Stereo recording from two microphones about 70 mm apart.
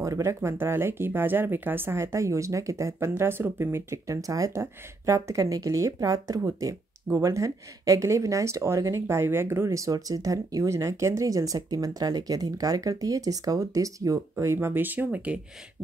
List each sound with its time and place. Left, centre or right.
0.0 s speech: right
4.1 s speech: right
14.4 s speech: right